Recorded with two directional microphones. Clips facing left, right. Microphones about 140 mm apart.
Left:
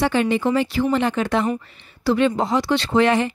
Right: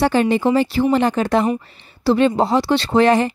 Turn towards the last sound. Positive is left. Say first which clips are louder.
# right 3 dB
turn(degrees=-40)  # may be behind; listen again after turning